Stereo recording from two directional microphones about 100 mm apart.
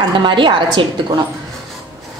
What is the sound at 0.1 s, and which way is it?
A woman's voice, 55° right (ahead or behind).